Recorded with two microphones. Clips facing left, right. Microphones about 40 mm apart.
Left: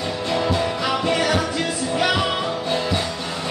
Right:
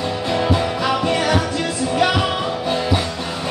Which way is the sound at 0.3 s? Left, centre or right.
Centre.